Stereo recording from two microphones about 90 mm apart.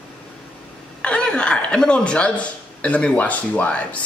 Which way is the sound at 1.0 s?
10° left (ahead or behind).